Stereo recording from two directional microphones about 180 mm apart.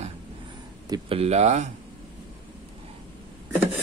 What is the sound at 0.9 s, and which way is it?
Speech, 35° right (ahead or behind).